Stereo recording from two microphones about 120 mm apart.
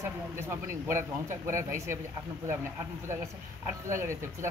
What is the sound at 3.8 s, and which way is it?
Speech, 20° right (ahead or behind).